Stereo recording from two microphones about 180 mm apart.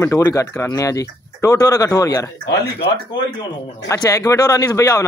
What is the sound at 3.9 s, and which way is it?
Speech, 15° left (ahead or behind).